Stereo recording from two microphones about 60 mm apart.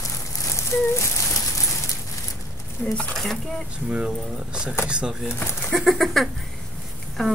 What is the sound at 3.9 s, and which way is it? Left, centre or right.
Speech, centre.